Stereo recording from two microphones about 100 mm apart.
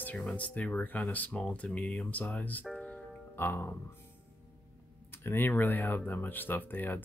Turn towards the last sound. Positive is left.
turn(degrees=20)  # may be behind; listen again after turning